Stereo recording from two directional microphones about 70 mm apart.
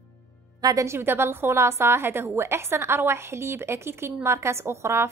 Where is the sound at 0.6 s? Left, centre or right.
Right.